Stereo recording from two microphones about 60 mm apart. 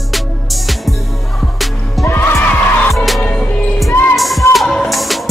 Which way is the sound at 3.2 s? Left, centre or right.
Centre.